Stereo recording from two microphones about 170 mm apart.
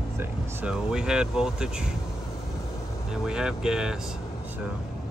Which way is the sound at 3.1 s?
5° right (ahead or behind).